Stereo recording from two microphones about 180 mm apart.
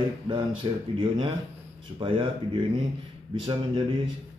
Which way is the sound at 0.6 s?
25° right (ahead or behind).